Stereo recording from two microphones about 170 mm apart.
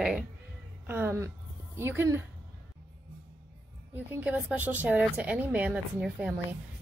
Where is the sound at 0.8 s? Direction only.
10° right (ahead or behind).